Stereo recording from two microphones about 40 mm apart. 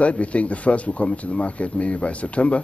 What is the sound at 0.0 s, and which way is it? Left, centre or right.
Speech, left.